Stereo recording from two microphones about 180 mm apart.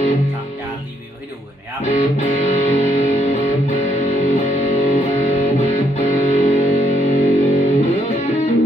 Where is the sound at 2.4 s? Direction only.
35° left (ahead or behind).